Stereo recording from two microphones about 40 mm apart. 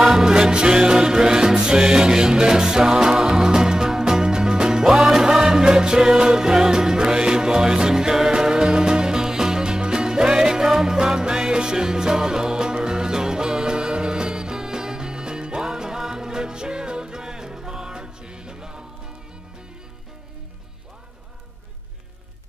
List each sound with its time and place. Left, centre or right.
0.1 s music: centre